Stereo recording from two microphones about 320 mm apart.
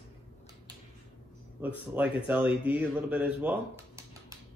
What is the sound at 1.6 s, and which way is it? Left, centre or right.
A man's voice, centre.